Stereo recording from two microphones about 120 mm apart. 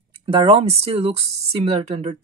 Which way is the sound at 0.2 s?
50° right (ahead or behind).